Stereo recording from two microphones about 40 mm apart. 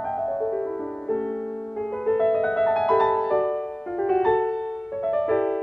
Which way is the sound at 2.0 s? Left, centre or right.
Centre.